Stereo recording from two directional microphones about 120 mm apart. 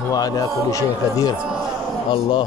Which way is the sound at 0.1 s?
30° left (ahead or behind).